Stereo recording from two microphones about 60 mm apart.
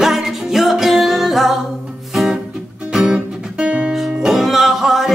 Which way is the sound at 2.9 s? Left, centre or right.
Centre.